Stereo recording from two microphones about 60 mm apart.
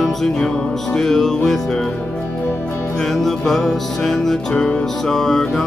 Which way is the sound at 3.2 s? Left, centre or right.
Centre.